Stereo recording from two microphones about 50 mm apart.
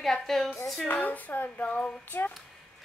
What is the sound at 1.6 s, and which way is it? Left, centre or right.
Child singing, left.